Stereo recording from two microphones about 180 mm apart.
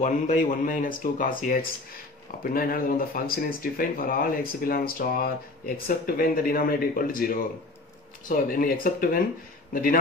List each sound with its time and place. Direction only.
0.0 s speech: 45° left (ahead or behind)